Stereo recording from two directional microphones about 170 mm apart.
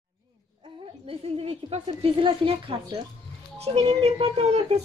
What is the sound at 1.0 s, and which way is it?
A woman's voice, 35° right (ahead or behind).